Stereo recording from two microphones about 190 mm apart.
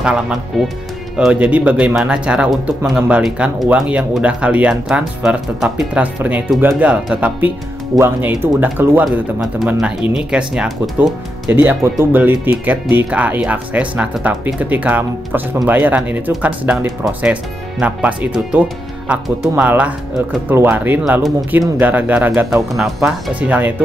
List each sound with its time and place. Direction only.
0.0 s speech: 5° right (ahead or behind)